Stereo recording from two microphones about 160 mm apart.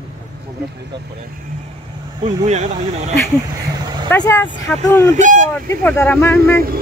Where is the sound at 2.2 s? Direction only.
45° right (ahead or behind).